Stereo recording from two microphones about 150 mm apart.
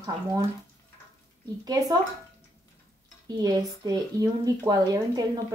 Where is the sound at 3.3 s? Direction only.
25° right (ahead or behind).